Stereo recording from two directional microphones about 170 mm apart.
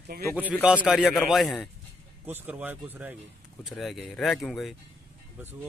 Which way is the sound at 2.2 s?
10° right (ahead or behind).